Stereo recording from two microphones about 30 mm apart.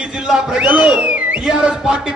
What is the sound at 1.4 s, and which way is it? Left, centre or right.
Speech, right.